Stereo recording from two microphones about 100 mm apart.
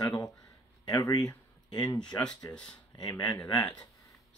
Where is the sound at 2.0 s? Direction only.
10° left (ahead or behind).